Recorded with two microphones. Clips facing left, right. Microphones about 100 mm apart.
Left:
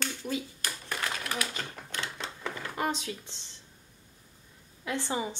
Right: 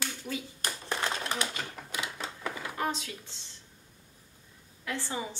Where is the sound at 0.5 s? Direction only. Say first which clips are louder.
Right 2 dB; 25° right (ahead or behind).